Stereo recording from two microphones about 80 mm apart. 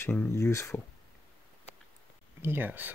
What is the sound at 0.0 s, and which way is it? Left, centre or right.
Speech, left.